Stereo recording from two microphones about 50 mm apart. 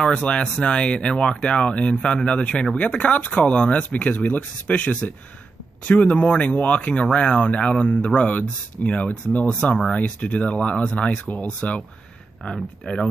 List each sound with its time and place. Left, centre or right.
0.0 s speech: left
12.9 s speech: left